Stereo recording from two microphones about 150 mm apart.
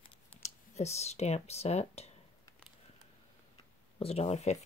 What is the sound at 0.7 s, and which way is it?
Speech, 45° left (ahead or behind).